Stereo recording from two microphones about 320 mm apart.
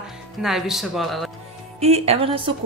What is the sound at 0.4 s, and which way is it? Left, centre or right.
Speech, centre.